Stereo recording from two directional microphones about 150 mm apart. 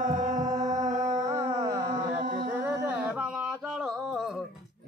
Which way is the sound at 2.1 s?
10° right (ahead or behind).